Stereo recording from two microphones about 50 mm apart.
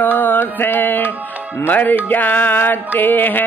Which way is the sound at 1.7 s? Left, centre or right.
Left.